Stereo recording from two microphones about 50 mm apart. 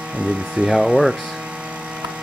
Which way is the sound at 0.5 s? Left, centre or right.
Centre.